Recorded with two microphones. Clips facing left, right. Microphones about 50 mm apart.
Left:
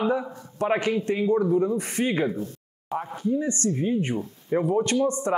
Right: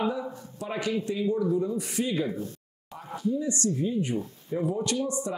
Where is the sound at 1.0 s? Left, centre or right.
Left.